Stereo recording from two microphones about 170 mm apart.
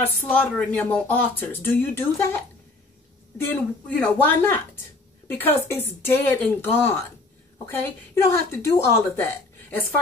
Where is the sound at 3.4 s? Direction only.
10° left (ahead or behind).